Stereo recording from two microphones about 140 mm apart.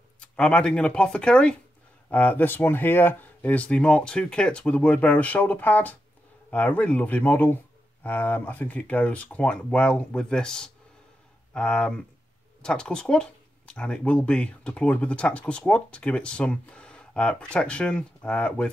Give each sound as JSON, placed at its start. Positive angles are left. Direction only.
{"t": 0.2, "sound": "speech", "side_deg": 5}